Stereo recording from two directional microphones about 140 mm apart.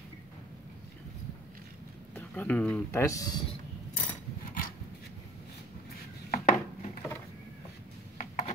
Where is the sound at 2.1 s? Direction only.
10° left (ahead or behind).